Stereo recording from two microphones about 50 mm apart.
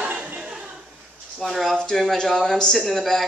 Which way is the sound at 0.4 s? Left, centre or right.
Centre.